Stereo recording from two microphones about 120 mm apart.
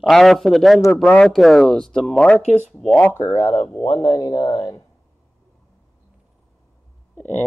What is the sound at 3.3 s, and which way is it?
Speech, 30° left (ahead or behind).